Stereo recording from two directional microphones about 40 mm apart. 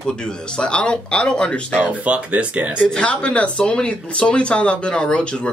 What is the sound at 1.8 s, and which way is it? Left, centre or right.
Speech, right.